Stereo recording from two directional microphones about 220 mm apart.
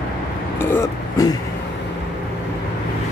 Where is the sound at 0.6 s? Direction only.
10° left (ahead or behind).